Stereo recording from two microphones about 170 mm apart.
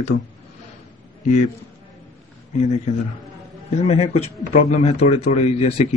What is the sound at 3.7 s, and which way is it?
Speech, 40° left (ahead or behind).